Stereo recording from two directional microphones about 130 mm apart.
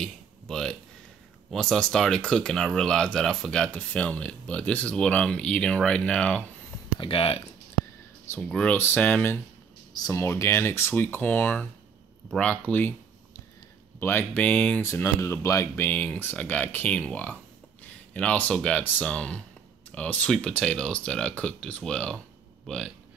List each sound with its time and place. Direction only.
0.0 s a sound: 5° left (ahead or behind)
1.5 s speech: 5° left (ahead or behind)
7.0 s speech: 45° left (ahead or behind)
8.4 s speech: 10° left (ahead or behind)
9.9 s speech: 25° left (ahead or behind)
13.9 s speech: 15° left (ahead or behind)
14.9 s speech: 20° left (ahead or behind); by 22.9 s 5° left (ahead or behind)